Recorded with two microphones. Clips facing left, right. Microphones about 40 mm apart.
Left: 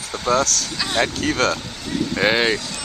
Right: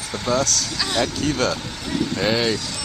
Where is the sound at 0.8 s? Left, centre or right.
Centre.